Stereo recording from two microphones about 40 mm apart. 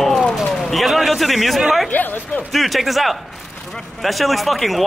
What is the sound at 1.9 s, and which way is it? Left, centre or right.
Speech, left.